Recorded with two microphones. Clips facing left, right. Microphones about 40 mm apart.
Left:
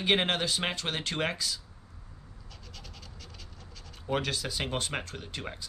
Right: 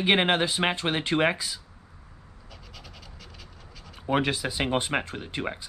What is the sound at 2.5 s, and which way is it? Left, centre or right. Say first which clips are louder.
Goat: right 3 dB; centre.